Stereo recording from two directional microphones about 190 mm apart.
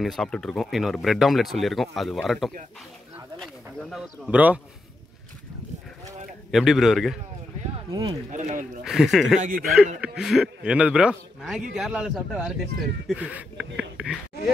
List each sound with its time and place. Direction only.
0.0 s speech: centre (ahead or behind)
6.5 s speech: centre (ahead or behind)
7.9 s speech: 20° right (ahead or behind)
8.3 s speech: 40° right (ahead or behind)
8.8 s speech: centre (ahead or behind)
9.4 s speech: 45° right (ahead or behind)
9.9 s speech: 5° right (ahead or behind)